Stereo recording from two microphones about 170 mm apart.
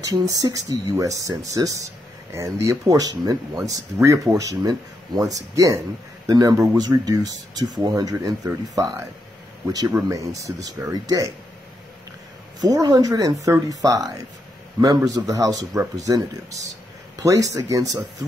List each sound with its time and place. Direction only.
0.0 s speech: 20° right (ahead or behind)
12.5 s speech: 20° right (ahead or behind)
17.2 s speech: 20° right (ahead or behind)